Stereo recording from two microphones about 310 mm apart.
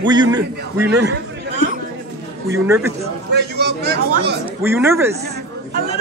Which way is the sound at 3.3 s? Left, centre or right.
Right.